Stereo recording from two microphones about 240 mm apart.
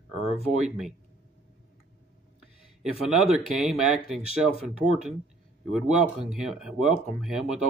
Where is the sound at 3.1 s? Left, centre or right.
Centre.